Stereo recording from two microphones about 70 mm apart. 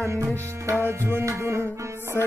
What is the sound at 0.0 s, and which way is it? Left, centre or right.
Music, right.